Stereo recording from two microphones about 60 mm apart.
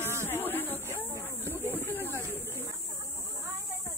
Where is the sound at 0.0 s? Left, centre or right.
Right.